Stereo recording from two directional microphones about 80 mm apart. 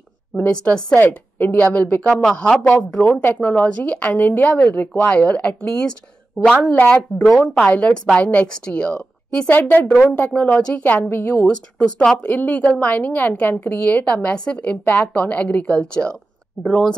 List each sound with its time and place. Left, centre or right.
0.4 s speech: centre
0.9 s speech: left
7.2 s speech: centre
7.5 s a woman's voice: centre